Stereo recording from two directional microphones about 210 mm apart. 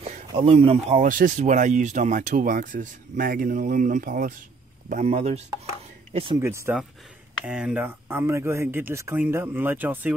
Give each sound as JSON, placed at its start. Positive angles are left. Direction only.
{"t": 0.0, "sound": "speech", "side_deg": -25}
{"t": 6.4, "sound": "speech", "side_deg": -10}